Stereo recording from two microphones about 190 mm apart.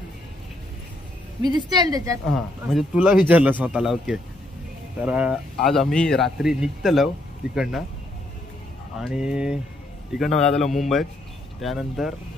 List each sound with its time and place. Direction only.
1.4 s a woman's voice: 20° right (ahead or behind)
2.3 s speech: centre (ahead or behind)
9.0 s speech: 5° right (ahead or behind)